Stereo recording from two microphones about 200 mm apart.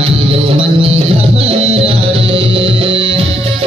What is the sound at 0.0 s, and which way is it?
Music, 25° right (ahead or behind).